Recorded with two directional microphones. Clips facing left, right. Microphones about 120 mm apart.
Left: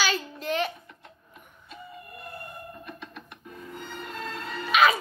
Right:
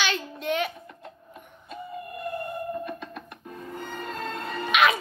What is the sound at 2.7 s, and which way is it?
Music, 45° right (ahead or behind).